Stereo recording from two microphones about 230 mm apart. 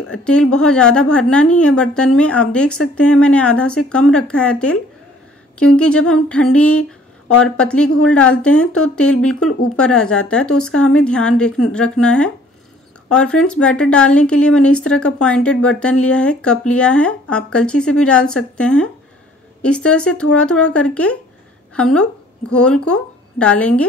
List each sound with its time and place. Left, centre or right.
0.1 s a woman's voice: centre
5.8 s a woman's voice: centre
6.8 s a sound: left
7.4 s a woman's voice: centre